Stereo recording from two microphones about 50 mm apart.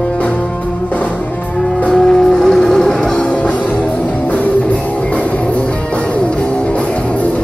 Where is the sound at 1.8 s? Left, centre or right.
Centre.